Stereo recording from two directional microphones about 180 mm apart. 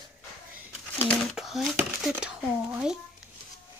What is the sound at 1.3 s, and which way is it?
Speech, centre (ahead or behind).